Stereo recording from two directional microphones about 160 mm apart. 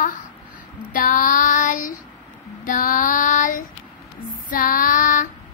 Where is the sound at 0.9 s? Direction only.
55° left (ahead or behind).